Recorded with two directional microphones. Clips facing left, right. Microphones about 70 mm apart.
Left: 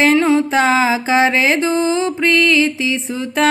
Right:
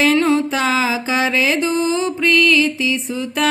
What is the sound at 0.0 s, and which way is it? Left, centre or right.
Music, left.